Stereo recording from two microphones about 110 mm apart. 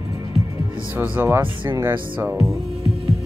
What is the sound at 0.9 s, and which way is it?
Speech, 20° right (ahead or behind).